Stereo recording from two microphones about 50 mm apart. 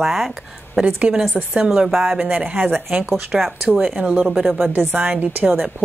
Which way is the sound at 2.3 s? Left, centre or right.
Right.